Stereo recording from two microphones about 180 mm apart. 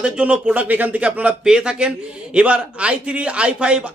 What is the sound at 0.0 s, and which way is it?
A man's voice, 5° right (ahead or behind).